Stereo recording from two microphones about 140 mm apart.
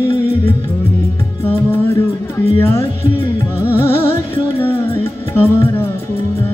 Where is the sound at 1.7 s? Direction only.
15° left (ahead or behind).